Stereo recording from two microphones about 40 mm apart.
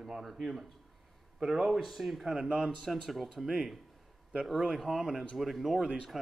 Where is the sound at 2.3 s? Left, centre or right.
Centre.